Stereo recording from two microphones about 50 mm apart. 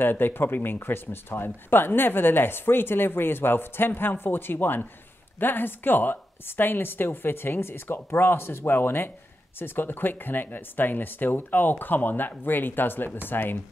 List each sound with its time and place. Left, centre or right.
0.0 s speech: left